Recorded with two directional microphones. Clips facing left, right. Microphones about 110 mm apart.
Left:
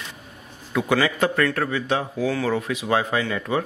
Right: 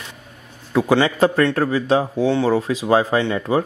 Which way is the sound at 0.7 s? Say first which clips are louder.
Right 5 dB; 30° right (ahead or behind).